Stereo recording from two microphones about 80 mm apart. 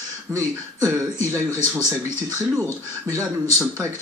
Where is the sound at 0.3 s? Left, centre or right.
Right.